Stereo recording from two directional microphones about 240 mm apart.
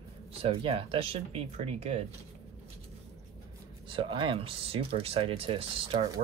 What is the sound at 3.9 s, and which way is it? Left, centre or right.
Speech, right.